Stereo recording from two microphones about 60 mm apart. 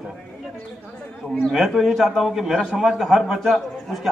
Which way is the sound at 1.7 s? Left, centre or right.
Centre.